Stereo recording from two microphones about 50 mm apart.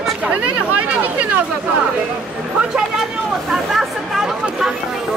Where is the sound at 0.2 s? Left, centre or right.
Right.